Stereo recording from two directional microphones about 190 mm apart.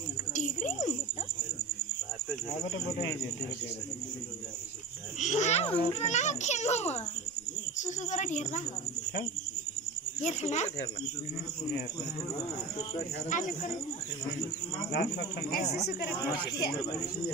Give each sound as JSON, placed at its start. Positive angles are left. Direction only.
{"t": 0.3, "sound": "a sound", "side_deg": 40}
{"t": 5.2, "sound": "a child's voice", "side_deg": 40}
{"t": 10.2, "sound": "a child's voice", "side_deg": 35}
{"t": 13.3, "sound": "a child's voice", "side_deg": 40}
{"t": 14.9, "sound": "speech", "side_deg": 60}